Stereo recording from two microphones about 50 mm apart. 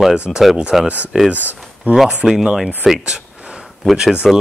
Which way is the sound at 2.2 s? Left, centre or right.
Centre.